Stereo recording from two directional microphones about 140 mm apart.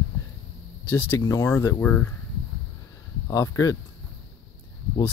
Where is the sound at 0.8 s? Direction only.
15° left (ahead or behind).